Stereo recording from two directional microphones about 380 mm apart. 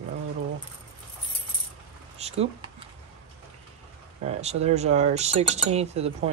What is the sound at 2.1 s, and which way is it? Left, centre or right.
Speech, centre.